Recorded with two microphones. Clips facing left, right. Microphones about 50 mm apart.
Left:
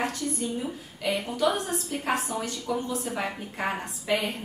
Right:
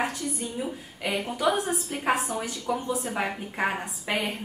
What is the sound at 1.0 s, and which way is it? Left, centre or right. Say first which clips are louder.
A woman's voice: even; centre.